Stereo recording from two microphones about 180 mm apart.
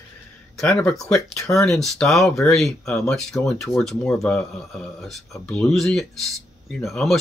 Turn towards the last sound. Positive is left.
turn(degrees=0)  # may be behind; listen again after turning